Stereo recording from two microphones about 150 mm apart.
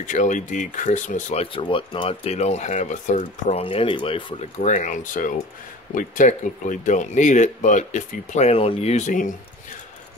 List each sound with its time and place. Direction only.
0.0 s speech: 55° left (ahead or behind)
3.6 s speech: 35° left (ahead or behind)
4.6 s speech: 55° left (ahead or behind)